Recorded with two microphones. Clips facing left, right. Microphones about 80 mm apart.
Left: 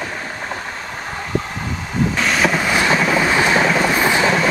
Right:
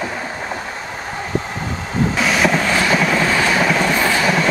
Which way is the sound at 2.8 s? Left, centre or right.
Centre.